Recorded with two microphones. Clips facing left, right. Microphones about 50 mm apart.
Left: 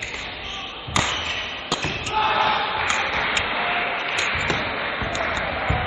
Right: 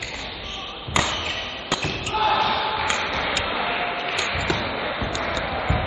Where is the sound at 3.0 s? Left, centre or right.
Centre.